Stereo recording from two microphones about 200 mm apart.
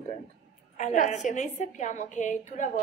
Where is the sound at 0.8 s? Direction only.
40° left (ahead or behind).